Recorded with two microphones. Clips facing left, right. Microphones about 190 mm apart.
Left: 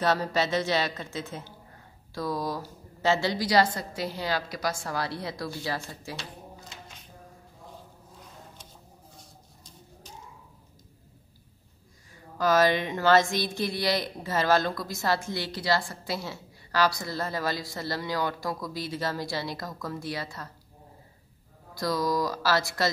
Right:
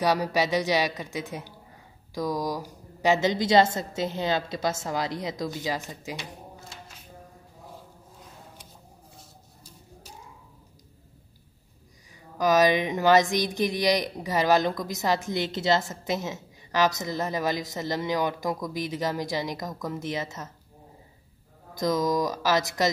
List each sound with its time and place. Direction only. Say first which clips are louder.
0.0 s a woman's voice: right 2 dB; 15° right (ahead or behind)
9.6 s a sound: right 1 dB; 10° right (ahead or behind)
12.4 s speech: right 2 dB; 15° right (ahead or behind)
21.7 s a woman's voice: right 3 dB; 20° right (ahead or behind)